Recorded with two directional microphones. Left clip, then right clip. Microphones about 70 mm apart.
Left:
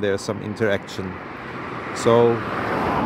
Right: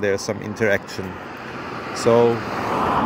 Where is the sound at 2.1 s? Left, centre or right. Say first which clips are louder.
Even; right.